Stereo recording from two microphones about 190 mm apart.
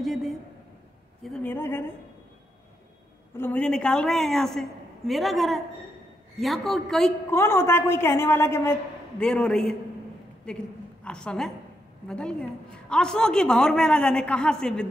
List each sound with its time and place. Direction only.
0.0 s a man's voice: centre (ahead or behind)
3.3 s a woman's voice: 10° left (ahead or behind)
7.2 s a woman's voice: 15° left (ahead or behind)